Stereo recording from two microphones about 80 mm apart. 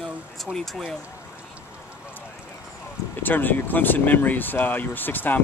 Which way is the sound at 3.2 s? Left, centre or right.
Left.